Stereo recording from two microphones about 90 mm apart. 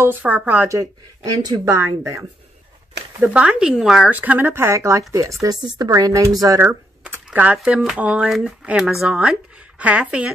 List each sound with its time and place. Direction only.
0.0 s speech: 20° right (ahead or behind)
0.7 s speech: 35° right (ahead or behind)
3.2 s speech: 10° right (ahead or behind)
4.1 s speech: 15° right (ahead or behind); by 5.6 s 40° right (ahead or behind)
5.6 s speech: 50° right (ahead or behind)
6.6 s typing: 20° right (ahead or behind)
7.5 s speech: 5° right (ahead or behind)